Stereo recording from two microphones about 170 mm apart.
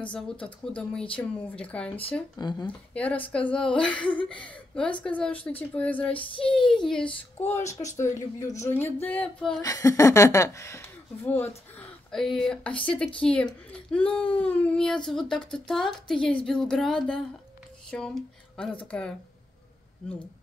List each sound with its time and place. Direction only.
0.0 s speech: 5° left (ahead or behind)
2.3 s speech: 25° left (ahead or behind)
2.9 s speech: 10° left (ahead or behind)
9.6 s speech: 20° left (ahead or behind)